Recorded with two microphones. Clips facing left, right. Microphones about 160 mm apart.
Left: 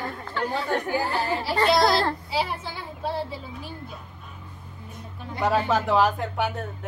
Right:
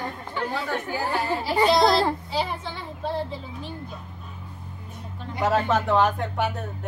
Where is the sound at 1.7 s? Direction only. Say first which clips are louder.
Even; centre (ahead or behind).